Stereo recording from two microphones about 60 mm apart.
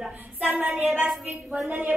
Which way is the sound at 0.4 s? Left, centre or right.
Right.